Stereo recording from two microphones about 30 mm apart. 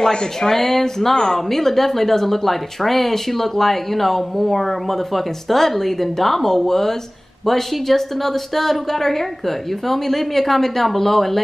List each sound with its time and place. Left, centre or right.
0.1 s speech: left
0.5 s speech: centre